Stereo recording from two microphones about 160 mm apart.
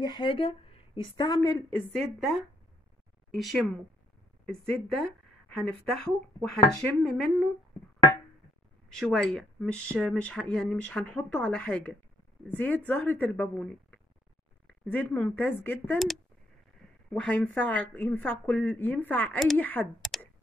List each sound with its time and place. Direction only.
0.0 s a woman's voice: 30° left (ahead or behind)
1.9 s speech: centre (ahead or behind)
6.5 s speech: centre (ahead or behind)
8.8 s speech: 5° left (ahead or behind)
17.1 s speech: 10° left (ahead or behind)
20.0 s a sound: centre (ahead or behind)